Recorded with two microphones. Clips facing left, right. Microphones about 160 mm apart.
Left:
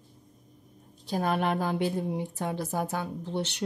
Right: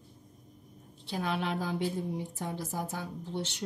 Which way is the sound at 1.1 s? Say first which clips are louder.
Left 5 dB; 45° left (ahead or behind).